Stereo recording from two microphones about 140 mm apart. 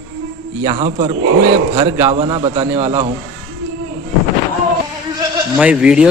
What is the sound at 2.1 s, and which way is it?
Speech, 40° right (ahead or behind).